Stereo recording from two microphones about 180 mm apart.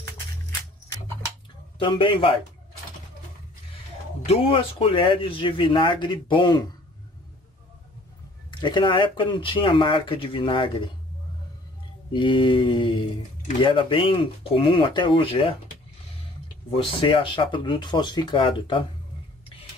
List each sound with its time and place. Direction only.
1.8 s speech: 30° left (ahead or behind)
4.3 s speech: 30° left (ahead or behind)
8.5 s speech: 25° left (ahead or behind)
12.1 s speech: 25° left (ahead or behind)
16.7 s speech: 30° left (ahead or behind)